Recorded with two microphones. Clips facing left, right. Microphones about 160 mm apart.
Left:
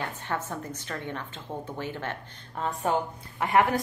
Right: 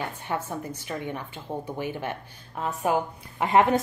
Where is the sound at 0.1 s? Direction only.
10° right (ahead or behind).